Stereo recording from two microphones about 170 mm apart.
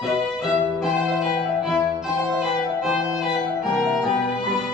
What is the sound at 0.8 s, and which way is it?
Music, 5° right (ahead or behind).